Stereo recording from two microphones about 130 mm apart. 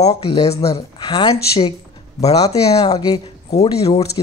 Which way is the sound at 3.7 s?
55° left (ahead or behind).